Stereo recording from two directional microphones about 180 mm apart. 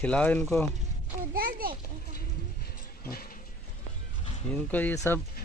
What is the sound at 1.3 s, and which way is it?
Children playing, 55° right (ahead or behind).